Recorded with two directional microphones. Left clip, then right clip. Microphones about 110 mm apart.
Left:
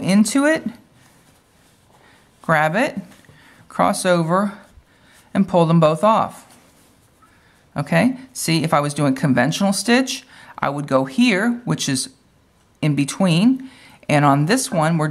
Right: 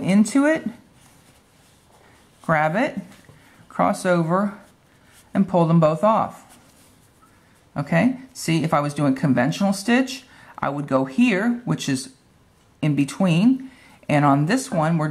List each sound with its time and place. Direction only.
0.0 s speech: 30° left (ahead or behind)
2.4 s speech: 30° left (ahead or behind)
7.7 s speech: 30° left (ahead or behind)